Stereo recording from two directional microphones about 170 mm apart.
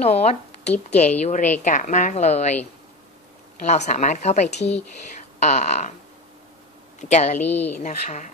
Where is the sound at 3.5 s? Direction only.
40° left (ahead or behind).